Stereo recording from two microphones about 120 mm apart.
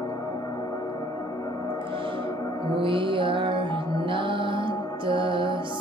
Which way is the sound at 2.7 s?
45° right (ahead or behind).